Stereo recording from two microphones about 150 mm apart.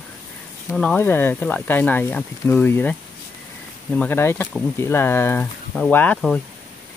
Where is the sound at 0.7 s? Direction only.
10° left (ahead or behind).